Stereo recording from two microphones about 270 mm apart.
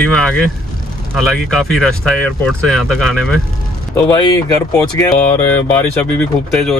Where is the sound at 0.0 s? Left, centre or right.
Centre.